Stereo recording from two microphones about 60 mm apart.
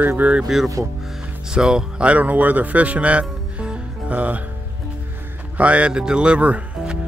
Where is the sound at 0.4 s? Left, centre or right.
Centre; by 4.4 s right.